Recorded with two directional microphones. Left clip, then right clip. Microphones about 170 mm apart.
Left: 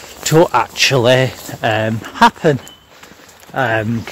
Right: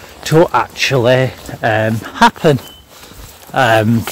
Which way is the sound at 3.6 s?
25° right (ahead or behind).